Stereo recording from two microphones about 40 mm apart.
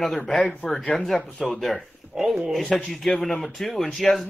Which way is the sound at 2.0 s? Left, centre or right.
Right.